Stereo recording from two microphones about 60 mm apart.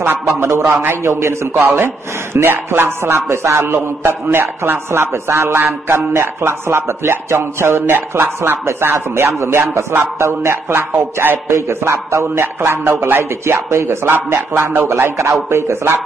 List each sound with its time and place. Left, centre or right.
0.0 s a man's voice: right
8.9 s a man's voice: right